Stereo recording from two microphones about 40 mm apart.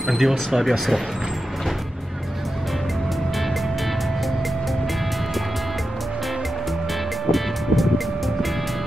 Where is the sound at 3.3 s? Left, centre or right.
Centre.